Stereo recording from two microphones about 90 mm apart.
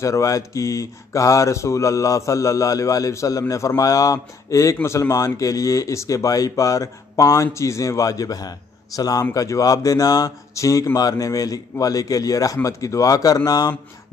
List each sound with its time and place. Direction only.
0.0 s speech: 35° left (ahead or behind)